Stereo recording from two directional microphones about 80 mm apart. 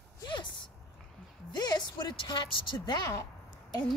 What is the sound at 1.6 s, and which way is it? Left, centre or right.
A woman's voice, left.